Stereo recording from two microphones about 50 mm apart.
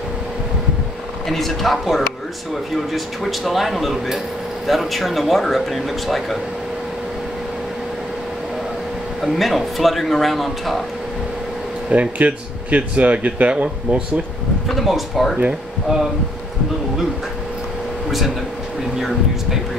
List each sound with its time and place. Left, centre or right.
1.3 s speech: centre
9.2 s speech: centre
11.9 s speech: right
14.8 s speech: centre
18.9 s speech: centre